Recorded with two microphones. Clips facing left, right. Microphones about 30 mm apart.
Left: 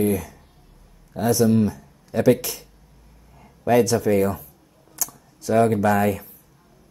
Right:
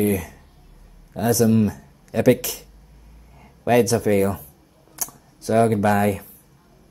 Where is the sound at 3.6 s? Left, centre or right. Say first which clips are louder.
Even; right.